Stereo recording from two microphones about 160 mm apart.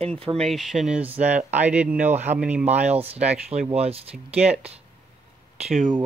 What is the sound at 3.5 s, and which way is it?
Speech, 40° right (ahead or behind).